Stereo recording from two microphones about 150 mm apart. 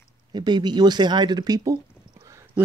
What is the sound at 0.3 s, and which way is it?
Speech, 30° right (ahead or behind).